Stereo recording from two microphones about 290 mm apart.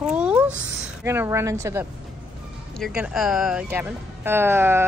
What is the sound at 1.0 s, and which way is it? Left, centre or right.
Speech, centre.